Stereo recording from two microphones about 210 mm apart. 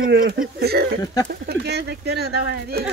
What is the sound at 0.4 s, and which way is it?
Speech, 50° right (ahead or behind).